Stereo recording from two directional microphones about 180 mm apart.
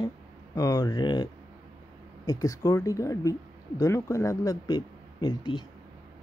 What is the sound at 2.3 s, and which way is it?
Speech, 20° left (ahead or behind).